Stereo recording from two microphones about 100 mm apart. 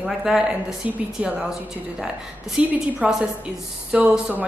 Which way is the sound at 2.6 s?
10° right (ahead or behind).